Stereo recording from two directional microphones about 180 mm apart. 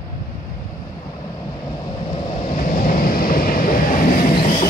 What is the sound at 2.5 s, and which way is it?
Vehicle, 50° left (ahead or behind).